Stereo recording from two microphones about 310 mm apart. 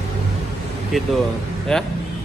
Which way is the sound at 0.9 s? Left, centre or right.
Centre.